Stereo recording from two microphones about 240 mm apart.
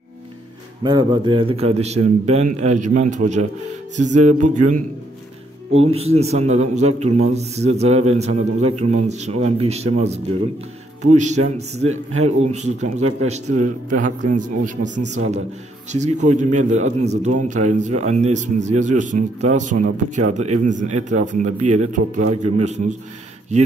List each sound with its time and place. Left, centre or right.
0.8 s a man's voice: centre
5.9 s a man's voice: right